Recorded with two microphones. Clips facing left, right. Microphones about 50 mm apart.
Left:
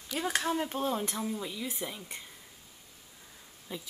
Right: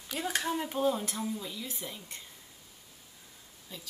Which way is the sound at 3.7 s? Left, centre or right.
Left.